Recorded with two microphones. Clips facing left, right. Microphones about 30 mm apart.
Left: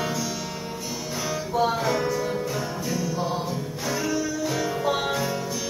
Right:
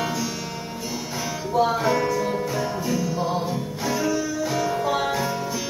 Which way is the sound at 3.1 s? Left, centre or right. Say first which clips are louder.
Right 3 dB; centre.